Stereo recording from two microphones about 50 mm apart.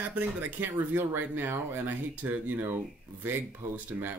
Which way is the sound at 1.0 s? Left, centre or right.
Right.